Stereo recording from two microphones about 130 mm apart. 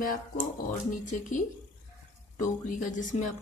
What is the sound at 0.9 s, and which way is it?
Speech, 80° left.